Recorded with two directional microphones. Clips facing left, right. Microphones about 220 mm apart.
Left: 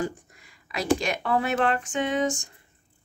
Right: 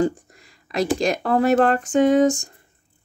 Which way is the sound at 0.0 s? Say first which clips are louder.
Right 9 dB; 35° right (ahead or behind).